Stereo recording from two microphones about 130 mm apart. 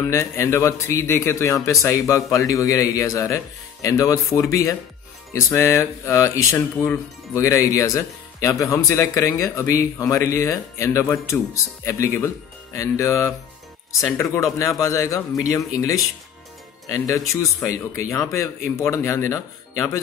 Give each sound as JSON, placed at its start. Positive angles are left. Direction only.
{"t": 0.1, "sound": "speech", "side_deg": 20}